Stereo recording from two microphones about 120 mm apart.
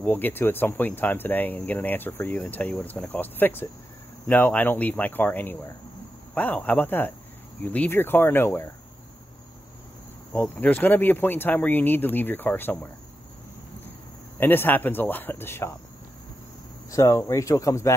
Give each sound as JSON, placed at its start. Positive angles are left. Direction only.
{"t": 0.0, "sound": "speech", "side_deg": 15}
{"t": 10.3, "sound": "speech", "side_deg": 15}
{"t": 14.4, "sound": "speech", "side_deg": 15}
{"t": 16.9, "sound": "speech", "side_deg": 25}